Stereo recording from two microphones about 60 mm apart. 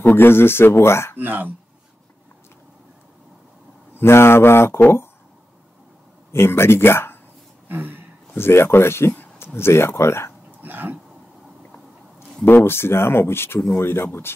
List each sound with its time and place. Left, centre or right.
0.0 s speech: left
1.1 s speech: right
4.0 s speech: left
6.3 s speech: left
7.6 s a sound: right
8.4 s speech: left
10.6 s speech: right
12.4 s speech: left